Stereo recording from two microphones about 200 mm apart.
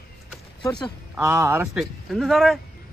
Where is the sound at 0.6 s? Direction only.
20° left (ahead or behind).